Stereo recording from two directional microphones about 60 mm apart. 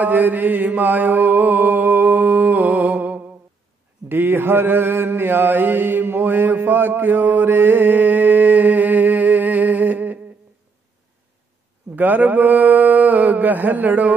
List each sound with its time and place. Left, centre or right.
0.0 s mantra: right
4.1 s mantra: right
11.9 s a sound: right